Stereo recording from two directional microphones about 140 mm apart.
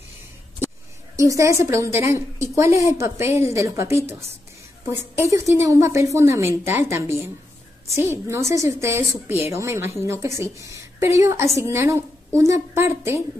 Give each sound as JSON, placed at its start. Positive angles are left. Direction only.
{"t": 1.1, "sound": "a woman's voice", "side_deg": -20}